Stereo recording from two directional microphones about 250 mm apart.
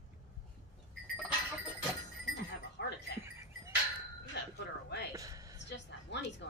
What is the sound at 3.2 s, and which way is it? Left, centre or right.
Livestock, centre.